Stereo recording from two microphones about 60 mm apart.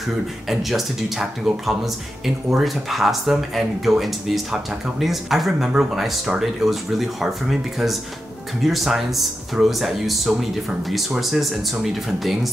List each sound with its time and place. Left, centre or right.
0.5 s speech: centre